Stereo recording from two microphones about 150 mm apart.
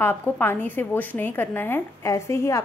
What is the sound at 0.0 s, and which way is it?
A woman's voice, 15° left (ahead or behind).